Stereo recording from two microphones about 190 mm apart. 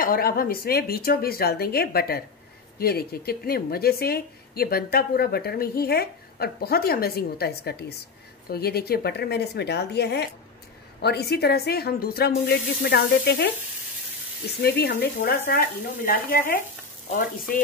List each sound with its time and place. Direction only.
0.0 s speech: 50° left (ahead or behind)
14.6 s speech: 55° left (ahead or behind)